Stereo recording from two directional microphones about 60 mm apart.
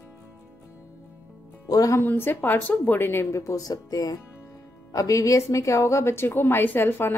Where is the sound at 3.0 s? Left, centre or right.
Left.